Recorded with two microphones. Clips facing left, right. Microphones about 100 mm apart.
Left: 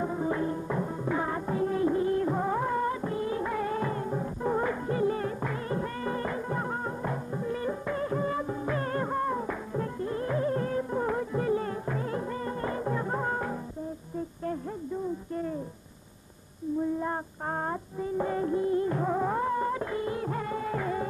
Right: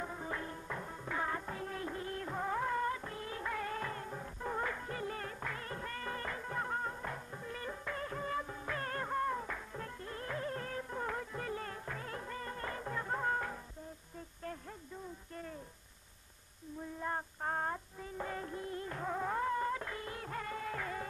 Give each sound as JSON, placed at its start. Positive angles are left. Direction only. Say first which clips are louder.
{"t": 0.0, "sound": "music", "louder": "left 12 dB", "side_deg": 20}
{"t": 17.0, "sound": "music", "louder": "left 6 dB", "side_deg": 20}